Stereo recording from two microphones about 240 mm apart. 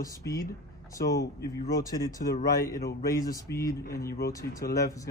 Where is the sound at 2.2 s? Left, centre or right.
Left.